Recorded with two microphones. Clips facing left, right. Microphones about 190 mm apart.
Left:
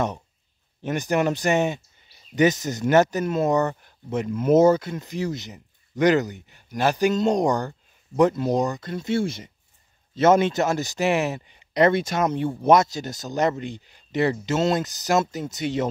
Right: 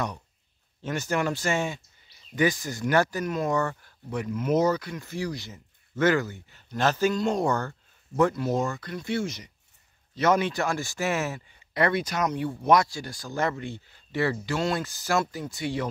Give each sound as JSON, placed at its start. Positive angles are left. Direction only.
{"t": 0.8, "sound": "speech", "side_deg": 15}